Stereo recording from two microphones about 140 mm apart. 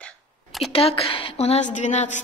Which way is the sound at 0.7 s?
45° left (ahead or behind).